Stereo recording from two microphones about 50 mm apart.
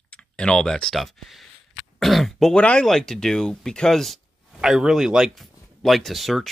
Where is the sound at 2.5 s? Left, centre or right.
Left.